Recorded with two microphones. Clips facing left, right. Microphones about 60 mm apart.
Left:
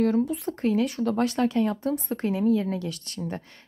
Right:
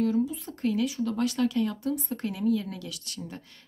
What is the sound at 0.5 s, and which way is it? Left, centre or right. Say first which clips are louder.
Speech: left 4 dB; left.